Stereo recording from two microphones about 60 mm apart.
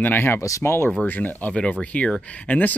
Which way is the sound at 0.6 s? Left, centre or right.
Left.